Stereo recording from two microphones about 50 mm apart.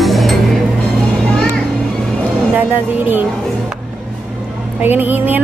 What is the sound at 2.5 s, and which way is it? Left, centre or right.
Speech, right.